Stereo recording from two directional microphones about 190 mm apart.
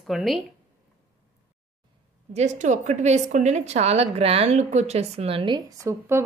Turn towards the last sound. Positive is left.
turn(degrees=-15)  # may be behind; listen again after turning